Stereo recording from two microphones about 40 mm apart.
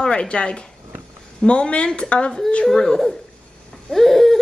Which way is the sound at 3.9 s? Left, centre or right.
Centre.